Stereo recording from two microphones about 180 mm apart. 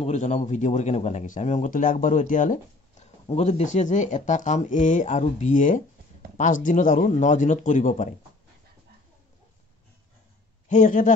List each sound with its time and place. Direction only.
0.0 s a man's voice: 40° left (ahead or behind)
10.7 s a man's voice: 45° left (ahead or behind)